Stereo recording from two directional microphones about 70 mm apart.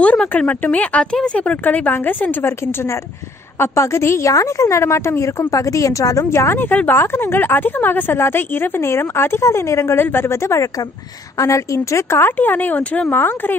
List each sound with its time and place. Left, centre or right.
0.0 s speech: left
2.4 s a woman's voice: left